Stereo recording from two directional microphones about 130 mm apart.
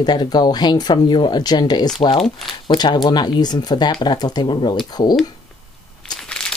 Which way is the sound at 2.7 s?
35° left (ahead or behind).